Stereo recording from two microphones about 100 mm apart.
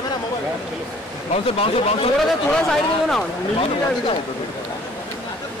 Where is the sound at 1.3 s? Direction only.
80° left.